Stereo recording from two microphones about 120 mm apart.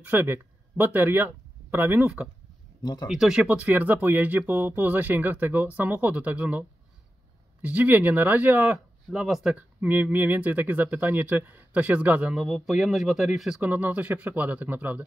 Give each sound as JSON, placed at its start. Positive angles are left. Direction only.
{"t": 0.0, "sound": "speech", "side_deg": -15}
{"t": 2.8, "sound": "speech", "side_deg": 35}
{"t": 3.1, "sound": "speech", "side_deg": -5}
{"t": 7.6, "sound": "speech", "side_deg": -15}
{"t": 13.6, "sound": "speech", "side_deg": -15}